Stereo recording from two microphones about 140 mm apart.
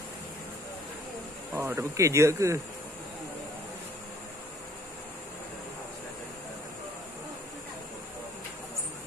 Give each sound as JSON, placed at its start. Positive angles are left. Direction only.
{"t": 1.5, "sound": "speech", "side_deg": -15}